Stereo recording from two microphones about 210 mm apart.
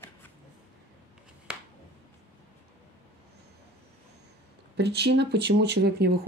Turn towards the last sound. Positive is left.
turn(degrees=-50)  # may be behind; listen again after turning